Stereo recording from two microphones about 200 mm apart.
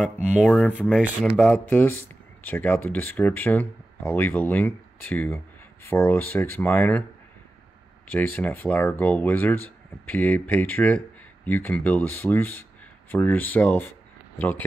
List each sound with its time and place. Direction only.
0.3 s speech: centre (ahead or behind)
8.1 s speech: 5° left (ahead or behind)